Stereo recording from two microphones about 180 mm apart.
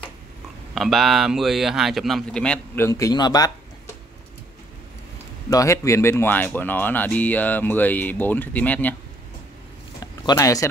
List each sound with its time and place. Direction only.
0.7 s speech: centre (ahead or behind); by 3.9 s 20° left (ahead or behind)
5.5 s speech: 15° left (ahead or behind)
10.2 s speech: 20° left (ahead or behind)